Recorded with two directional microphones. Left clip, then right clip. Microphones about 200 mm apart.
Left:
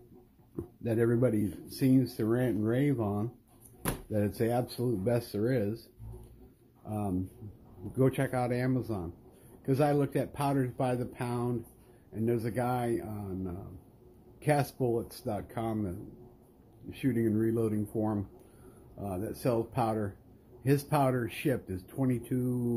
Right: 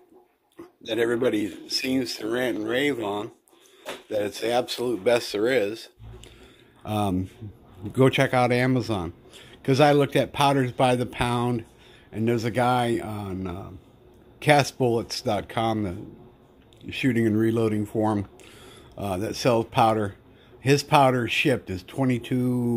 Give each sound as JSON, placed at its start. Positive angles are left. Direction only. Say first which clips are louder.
{"t": 0.8, "sound": "speech", "louder": "right 5 dB", "side_deg": -40}
{"t": 4.3, "sound": "speech", "louder": "right 7 dB", "side_deg": -45}
{"t": 6.8, "sound": "speech", "louder": "right 9 dB", "side_deg": -40}